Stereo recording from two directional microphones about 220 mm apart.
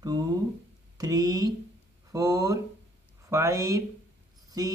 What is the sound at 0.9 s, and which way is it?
Speech, 15° right (ahead or behind).